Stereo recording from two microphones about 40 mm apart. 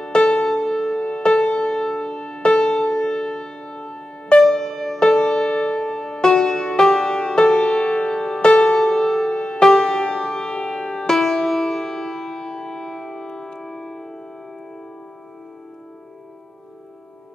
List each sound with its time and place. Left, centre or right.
0.0 s music: centre
4.4 s music: centre
8.8 s music: centre